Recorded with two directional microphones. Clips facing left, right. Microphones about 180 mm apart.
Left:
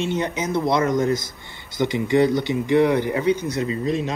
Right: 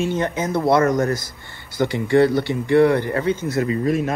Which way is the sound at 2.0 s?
15° left (ahead or behind).